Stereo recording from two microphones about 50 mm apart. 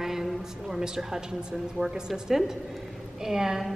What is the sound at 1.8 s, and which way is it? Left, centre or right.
A woman's voice, centre.